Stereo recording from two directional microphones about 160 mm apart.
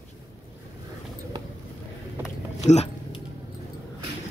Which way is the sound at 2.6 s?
45° left (ahead or behind).